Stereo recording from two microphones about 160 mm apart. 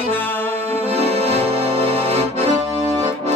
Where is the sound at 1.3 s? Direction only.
40° right (ahead or behind).